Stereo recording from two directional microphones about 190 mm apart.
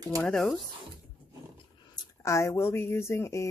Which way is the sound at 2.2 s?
15° left (ahead or behind).